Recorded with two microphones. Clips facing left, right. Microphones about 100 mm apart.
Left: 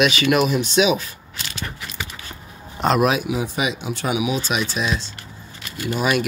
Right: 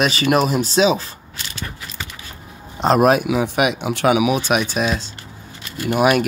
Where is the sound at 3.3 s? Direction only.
65° right (ahead or behind).